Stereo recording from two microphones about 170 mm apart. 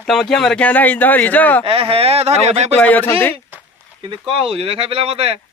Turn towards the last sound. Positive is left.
turn(degrees=-35)  # may be behind; listen again after turning